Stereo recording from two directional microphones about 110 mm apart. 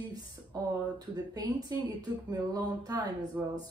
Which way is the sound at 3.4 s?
25° right (ahead or behind).